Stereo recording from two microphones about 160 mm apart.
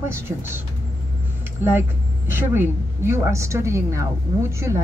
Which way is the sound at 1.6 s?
15° right (ahead or behind).